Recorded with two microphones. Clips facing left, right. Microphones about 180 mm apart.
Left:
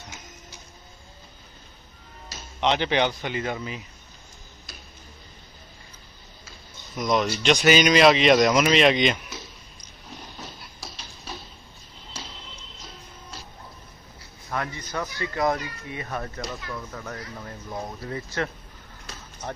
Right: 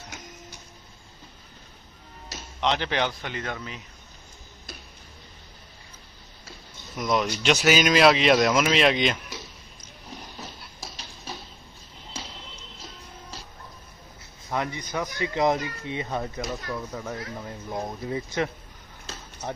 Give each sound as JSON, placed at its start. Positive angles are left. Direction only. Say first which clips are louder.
{"t": 2.6, "sound": "speech", "louder": "left 3 dB", "side_deg": 0}
{"t": 7.0, "sound": "speech", "louder": "left 2 dB", "side_deg": -5}
{"t": 14.5, "sound": "speech", "louder": "right 2 dB", "side_deg": -15}
{"t": 16.9, "sound": "speech", "louder": "right 3 dB", "side_deg": -10}